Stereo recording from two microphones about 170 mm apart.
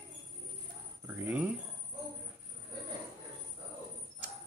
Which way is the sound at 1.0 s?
10° right (ahead or behind).